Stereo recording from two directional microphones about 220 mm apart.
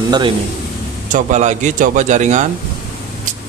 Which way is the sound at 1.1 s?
35° right (ahead or behind).